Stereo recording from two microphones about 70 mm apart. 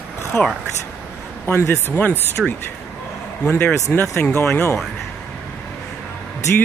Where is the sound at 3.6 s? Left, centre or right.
Left.